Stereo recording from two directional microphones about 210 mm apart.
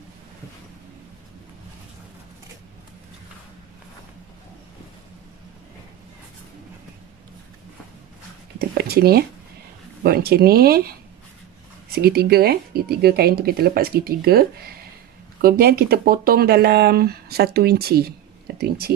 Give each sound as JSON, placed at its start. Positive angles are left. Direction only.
{"t": 8.5, "sound": "speech", "side_deg": -45}